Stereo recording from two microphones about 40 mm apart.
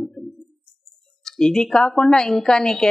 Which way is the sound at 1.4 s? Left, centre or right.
Centre.